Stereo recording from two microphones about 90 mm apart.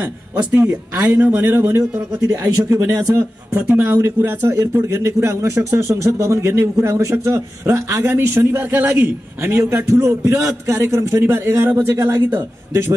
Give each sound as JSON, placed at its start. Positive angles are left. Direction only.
{"t": 0.0, "sound": "speech", "side_deg": -20}